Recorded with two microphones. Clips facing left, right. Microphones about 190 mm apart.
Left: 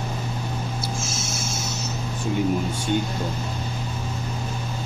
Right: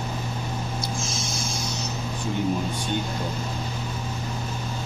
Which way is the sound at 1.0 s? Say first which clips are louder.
Even; 5° left (ahead or behind).